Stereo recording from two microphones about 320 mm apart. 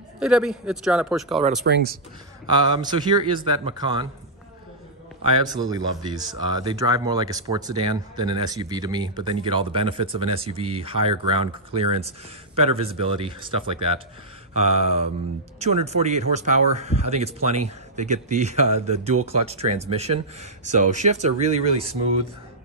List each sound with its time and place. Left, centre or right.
0.2 s a man's voice: centre
1.6 s speech: right
2.5 s speech: centre
5.2 s speech: centre